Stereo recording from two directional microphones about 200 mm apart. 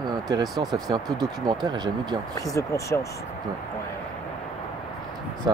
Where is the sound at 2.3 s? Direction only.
15° left (ahead or behind).